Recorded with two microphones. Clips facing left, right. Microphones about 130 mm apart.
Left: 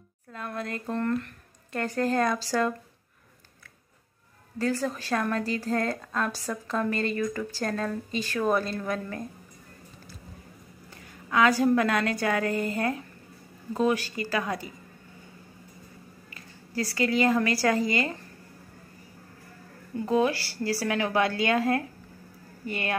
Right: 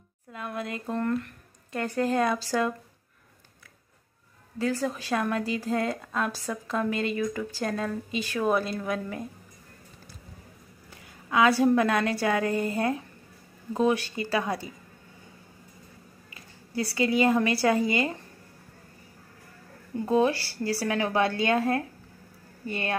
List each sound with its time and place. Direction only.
0.3 s a woman's voice: 10° right (ahead or behind)
4.6 s a woman's voice: 5° right (ahead or behind)
11.2 s a woman's voice: 10° right (ahead or behind)
17.0 s a woman's voice: 15° right (ahead or behind)
20.1 s a woman's voice: 25° right (ahead or behind)